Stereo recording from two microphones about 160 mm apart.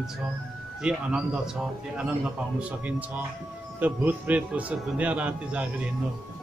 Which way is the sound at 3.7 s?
10° right (ahead or behind).